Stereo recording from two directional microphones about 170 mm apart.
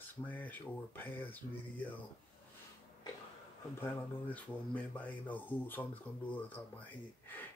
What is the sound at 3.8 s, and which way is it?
Speech, 10° left (ahead or behind).